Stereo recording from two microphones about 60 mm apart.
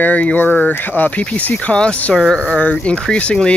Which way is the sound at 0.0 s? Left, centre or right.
Left.